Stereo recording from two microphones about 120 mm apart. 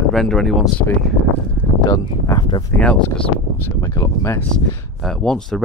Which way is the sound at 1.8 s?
30° left (ahead or behind).